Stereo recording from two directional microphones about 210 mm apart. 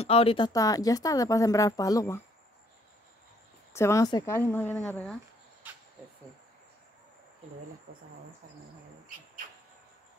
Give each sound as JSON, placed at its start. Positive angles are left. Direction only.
{"t": 0.0, "sound": "speech", "side_deg": 25}
{"t": 3.7, "sound": "speech", "side_deg": 15}